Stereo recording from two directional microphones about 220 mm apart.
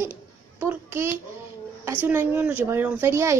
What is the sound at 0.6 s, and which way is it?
A child's voice, 10° right (ahead or behind).